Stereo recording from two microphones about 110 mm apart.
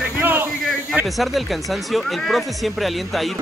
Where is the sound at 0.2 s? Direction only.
20° right (ahead or behind).